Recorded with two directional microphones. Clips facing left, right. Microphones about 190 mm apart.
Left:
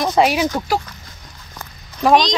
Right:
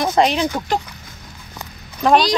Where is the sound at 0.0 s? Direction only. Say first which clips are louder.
Left 1 dB; 5° left (ahead or behind).